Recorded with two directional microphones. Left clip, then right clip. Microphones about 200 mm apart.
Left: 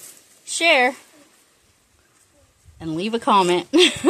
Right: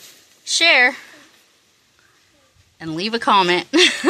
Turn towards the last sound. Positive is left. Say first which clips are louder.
# right 1 dB
turn(degrees=0)  # may be behind; listen again after turning